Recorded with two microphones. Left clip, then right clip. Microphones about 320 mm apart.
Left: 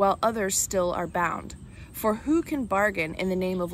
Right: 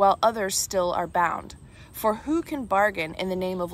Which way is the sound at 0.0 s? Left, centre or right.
Centre.